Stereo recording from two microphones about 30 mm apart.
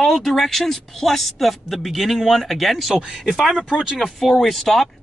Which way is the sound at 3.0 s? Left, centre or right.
Centre.